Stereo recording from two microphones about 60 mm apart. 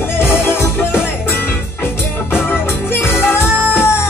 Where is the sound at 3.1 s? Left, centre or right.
Left.